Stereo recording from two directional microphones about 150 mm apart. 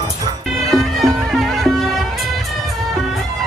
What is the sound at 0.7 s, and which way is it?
Music, centre (ahead or behind).